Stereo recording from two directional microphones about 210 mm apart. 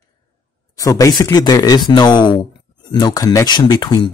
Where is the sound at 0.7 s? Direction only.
15° left (ahead or behind).